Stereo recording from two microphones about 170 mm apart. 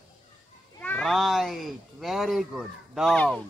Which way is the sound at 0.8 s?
10° left (ahead or behind).